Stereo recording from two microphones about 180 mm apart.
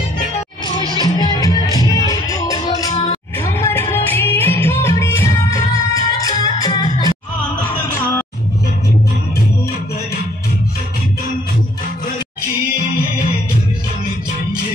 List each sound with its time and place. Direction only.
0.9 s music: 20° left (ahead or behind)